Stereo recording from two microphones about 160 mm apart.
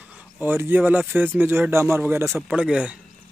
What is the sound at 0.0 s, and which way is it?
Speech, 10° right (ahead or behind).